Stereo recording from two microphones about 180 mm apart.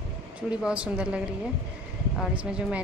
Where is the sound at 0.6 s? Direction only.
5° right (ahead or behind).